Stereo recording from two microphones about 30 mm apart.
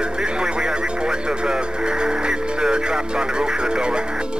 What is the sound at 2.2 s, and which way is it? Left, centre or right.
Music, right.